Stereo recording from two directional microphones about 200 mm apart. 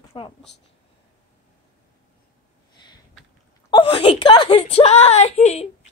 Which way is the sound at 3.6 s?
25° left (ahead or behind).